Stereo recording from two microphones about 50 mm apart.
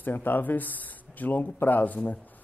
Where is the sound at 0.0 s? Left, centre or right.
Left.